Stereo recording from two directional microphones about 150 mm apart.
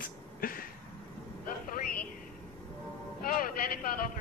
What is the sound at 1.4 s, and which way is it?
Vehicle, 65° left (ahead or behind).